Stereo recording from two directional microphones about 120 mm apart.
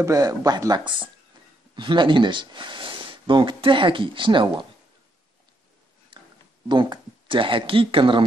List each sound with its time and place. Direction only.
0.0 s speech: 30° right (ahead or behind)
6.1 s a sound: 45° right (ahead or behind)
6.7 s speech: 40° right (ahead or behind)